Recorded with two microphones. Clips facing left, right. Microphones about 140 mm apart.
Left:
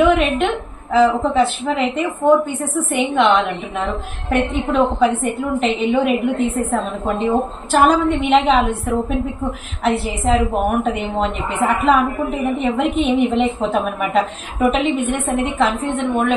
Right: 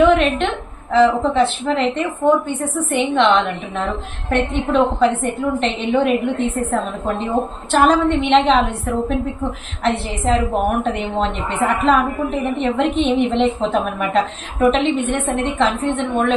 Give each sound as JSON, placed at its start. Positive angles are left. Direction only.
{"t": 0.0, "sound": "a woman's voice", "side_deg": 0}